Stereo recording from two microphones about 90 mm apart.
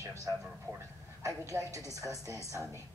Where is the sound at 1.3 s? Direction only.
35° right (ahead or behind).